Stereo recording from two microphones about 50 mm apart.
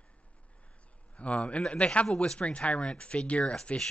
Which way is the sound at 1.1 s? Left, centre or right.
Left.